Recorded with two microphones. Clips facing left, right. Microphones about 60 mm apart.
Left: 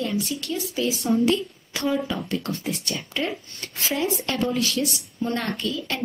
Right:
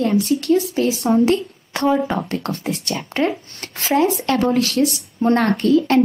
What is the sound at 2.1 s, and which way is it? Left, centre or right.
A woman's voice, right.